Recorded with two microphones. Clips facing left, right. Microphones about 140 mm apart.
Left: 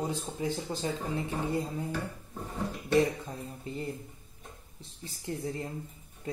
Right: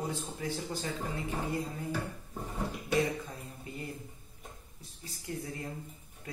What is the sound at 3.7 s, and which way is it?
Speech, 30° left (ahead or behind).